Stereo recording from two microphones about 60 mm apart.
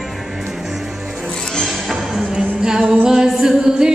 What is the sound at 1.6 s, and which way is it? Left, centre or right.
Music, centre.